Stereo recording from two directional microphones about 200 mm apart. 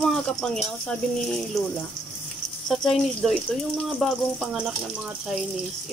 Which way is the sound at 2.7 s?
Centre (ahead or behind).